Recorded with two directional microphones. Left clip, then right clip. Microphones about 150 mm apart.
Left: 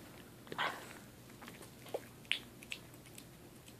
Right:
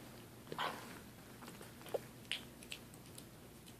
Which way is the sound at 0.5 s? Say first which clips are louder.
Left 3 dB; 15° left (ahead or behind).